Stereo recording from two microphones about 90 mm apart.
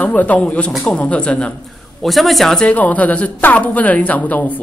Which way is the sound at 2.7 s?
15° left (ahead or behind).